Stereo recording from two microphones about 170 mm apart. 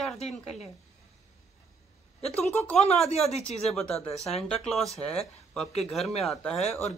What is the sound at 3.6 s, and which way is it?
Speech, centre (ahead or behind).